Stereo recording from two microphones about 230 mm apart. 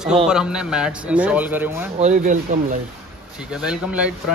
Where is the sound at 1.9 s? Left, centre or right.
Right.